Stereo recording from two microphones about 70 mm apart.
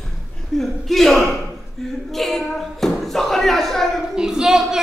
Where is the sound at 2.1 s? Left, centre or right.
Centre.